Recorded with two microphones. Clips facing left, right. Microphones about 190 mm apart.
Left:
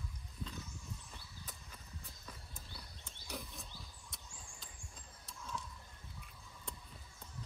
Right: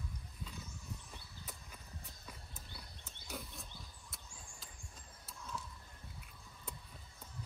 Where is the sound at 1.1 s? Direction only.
10° right (ahead or behind).